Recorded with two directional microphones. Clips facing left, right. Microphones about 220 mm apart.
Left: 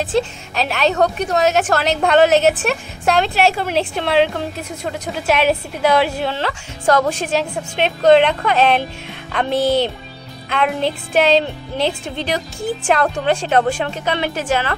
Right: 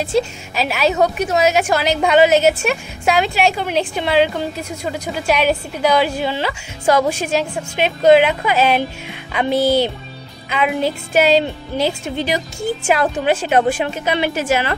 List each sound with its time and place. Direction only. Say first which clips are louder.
0.0 s a woman's voice: right 1 dB; centre (ahead or behind)